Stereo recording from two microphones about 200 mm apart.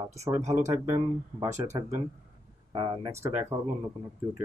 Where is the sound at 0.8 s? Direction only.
15° right (ahead or behind).